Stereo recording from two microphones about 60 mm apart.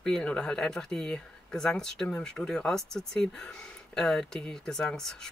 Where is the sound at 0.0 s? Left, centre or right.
Centre.